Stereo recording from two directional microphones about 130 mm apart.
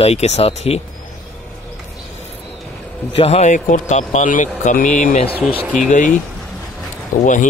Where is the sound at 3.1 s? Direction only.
55° left (ahead or behind); by 5.3 s 75° left (ahead or behind).